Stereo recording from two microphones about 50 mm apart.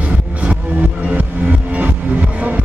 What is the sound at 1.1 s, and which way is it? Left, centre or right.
Music, right.